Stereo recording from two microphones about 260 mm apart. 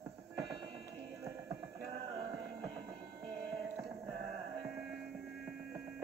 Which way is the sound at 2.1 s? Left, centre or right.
Centre.